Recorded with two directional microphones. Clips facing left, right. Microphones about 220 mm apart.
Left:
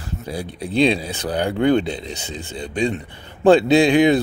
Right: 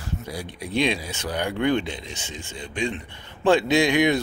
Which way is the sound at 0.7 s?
35° left (ahead or behind).